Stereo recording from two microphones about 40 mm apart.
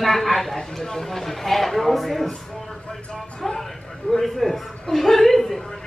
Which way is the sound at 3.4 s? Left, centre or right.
Centre.